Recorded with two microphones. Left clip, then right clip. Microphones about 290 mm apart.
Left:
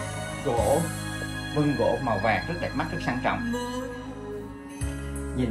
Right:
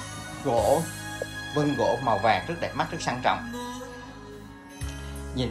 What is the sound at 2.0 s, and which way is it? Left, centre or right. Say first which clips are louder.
Speech: right 2 dB; centre.